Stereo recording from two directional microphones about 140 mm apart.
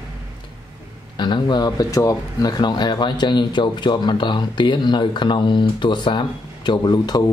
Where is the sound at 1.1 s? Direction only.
35° left (ahead or behind).